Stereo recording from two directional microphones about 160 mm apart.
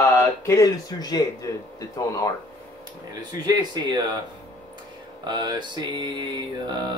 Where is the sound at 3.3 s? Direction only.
25° right (ahead or behind).